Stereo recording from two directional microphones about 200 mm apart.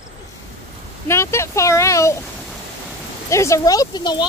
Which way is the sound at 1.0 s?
15° left (ahead or behind).